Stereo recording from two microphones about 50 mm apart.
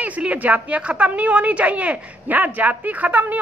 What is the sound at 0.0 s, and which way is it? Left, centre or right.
A woman's voice, right.